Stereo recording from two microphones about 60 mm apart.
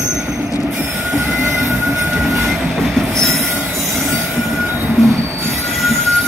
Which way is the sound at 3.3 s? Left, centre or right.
Right.